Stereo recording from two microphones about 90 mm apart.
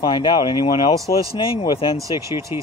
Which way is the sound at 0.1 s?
65° left (ahead or behind).